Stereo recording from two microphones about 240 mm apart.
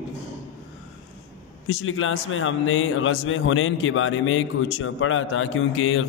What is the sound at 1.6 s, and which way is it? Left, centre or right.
A man's voice, left.